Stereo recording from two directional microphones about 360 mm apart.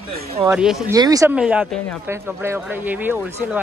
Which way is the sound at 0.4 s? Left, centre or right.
Centre.